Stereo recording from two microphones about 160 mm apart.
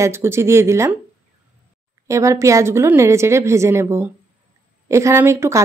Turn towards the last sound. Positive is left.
turn(degrees=-15)  # may be behind; listen again after turning